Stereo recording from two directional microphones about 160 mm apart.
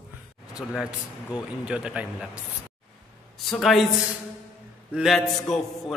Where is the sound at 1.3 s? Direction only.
5° right (ahead or behind).